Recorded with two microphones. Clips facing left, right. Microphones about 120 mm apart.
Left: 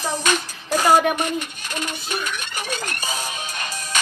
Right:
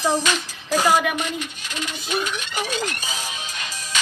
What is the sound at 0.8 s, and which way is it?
Music, 50° left (ahead or behind).